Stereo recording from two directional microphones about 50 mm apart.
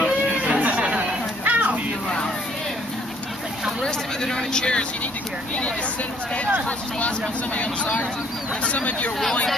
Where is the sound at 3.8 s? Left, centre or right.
Centre.